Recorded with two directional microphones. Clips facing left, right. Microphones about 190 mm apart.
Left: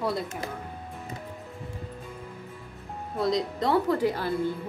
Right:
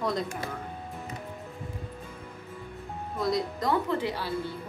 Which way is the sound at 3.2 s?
25° left (ahead or behind).